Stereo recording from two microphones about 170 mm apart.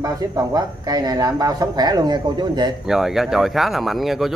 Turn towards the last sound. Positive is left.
turn(degrees=0)  # may be behind; listen again after turning